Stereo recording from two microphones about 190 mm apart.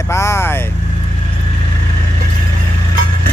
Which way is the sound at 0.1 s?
15° left (ahead or behind).